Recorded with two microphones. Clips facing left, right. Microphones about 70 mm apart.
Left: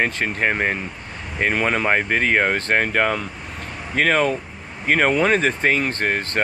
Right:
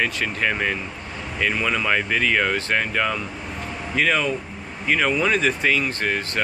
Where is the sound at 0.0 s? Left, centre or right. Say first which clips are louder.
Left 2 dB; left.